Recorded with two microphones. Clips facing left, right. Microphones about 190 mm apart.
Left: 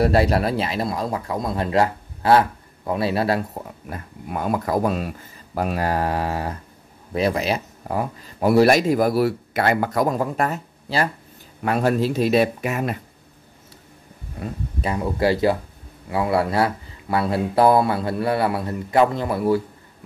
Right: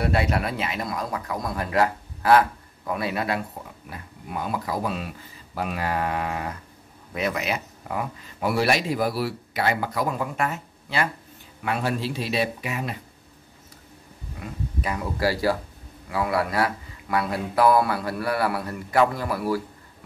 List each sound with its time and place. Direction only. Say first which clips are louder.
0.0 s speech: left 6 dB; 35° left (ahead or behind)
3.9 s speech: left 4 dB; 50° left (ahead or behind)
14.4 s speech: left 4 dB; 30° left (ahead or behind)